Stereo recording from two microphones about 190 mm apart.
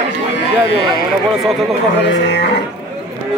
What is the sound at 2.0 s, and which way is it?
Speech, 65° left (ahead or behind).